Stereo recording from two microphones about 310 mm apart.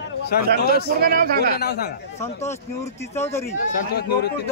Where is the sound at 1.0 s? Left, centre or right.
Right.